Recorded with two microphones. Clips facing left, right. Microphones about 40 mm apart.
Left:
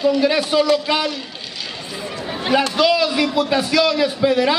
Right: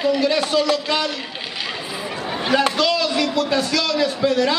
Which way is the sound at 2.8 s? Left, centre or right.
Centre.